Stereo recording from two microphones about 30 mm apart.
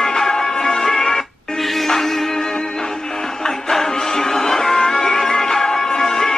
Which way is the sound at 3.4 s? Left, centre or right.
Centre.